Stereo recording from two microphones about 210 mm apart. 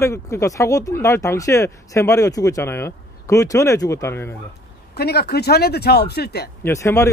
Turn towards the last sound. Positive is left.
turn(degrees=15)  # may be behind; listen again after turning